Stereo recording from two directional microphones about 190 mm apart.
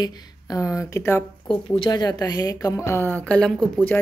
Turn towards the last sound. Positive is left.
turn(degrees=5)  # may be behind; listen again after turning